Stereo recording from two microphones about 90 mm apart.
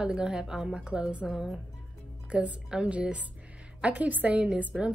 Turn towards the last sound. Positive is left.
turn(degrees=-15)  # may be behind; listen again after turning